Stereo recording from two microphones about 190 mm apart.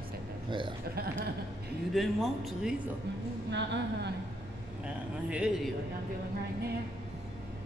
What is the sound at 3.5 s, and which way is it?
Speech, 65° right (ahead or behind).